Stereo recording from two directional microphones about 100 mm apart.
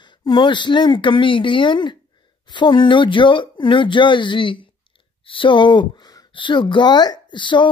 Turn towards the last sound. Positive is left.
turn(degrees=50)  # may be behind; listen again after turning